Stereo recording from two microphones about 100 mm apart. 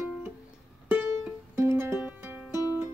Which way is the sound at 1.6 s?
25° right (ahead or behind).